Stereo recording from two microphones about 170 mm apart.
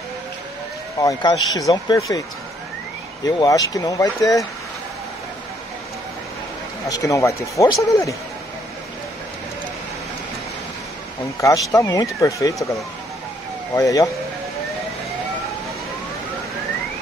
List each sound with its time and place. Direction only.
1.0 s speech: 20° left (ahead or behind)
3.3 s speech: 20° left (ahead or behind)
6.9 s speech: 20° left (ahead or behind)
11.4 s speech: 20° left (ahead or behind)
13.7 s speech: 20° left (ahead or behind)